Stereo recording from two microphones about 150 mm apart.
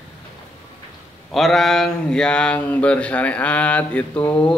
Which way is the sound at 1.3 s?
Centre (ahead or behind).